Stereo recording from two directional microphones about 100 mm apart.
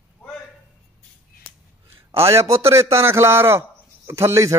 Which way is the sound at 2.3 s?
30° right (ahead or behind).